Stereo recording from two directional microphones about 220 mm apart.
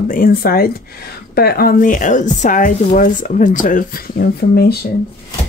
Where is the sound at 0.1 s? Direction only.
40° left (ahead or behind).